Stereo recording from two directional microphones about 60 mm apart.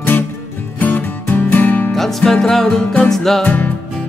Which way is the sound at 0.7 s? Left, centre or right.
Left.